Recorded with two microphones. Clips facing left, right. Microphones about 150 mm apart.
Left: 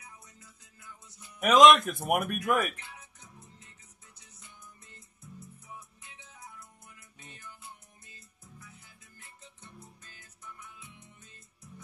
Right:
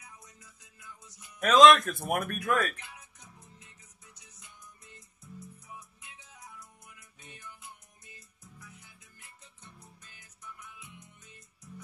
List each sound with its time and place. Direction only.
0.7 s speech: 20° left (ahead or behind)
7.2 s music: 15° right (ahead or behind)